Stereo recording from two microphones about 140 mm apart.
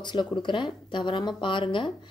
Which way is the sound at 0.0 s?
30° left (ahead or behind).